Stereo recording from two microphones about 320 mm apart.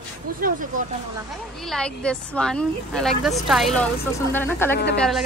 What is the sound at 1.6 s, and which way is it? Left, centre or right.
Speech, centre.